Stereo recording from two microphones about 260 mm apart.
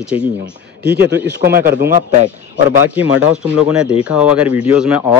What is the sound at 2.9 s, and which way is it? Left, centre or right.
Speech, centre.